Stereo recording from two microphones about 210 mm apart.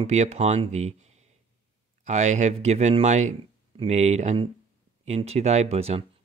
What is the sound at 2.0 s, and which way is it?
Speech, 35° right (ahead or behind).